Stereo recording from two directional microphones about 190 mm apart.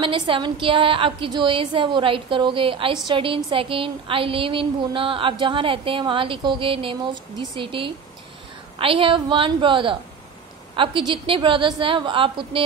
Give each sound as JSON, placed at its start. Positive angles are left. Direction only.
{"t": 0.0, "sound": "speech", "side_deg": -25}